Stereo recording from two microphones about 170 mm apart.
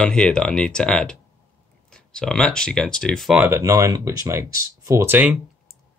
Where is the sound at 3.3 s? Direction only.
10° right (ahead or behind).